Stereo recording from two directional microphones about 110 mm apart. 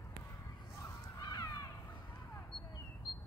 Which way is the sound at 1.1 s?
35° left (ahead or behind).